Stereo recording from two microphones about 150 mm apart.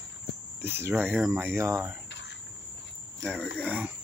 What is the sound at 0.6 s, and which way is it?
Speech, 15° right (ahead or behind).